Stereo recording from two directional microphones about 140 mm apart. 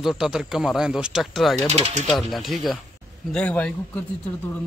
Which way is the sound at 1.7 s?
50° right (ahead or behind).